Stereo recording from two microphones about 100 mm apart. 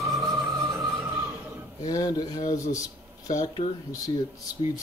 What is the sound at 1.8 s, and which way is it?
Speech, 40° left (ahead or behind).